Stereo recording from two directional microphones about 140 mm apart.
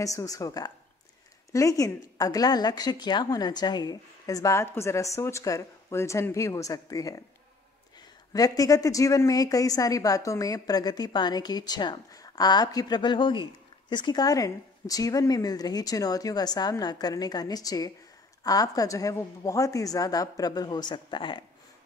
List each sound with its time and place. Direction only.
0.0 s a woman's voice: 25° left (ahead or behind)
8.3 s a woman's voice: 25° left (ahead or behind)